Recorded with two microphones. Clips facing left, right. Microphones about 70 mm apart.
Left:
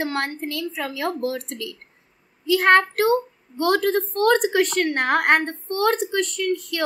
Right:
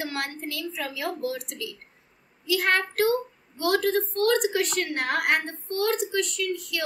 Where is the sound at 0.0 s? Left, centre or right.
Left.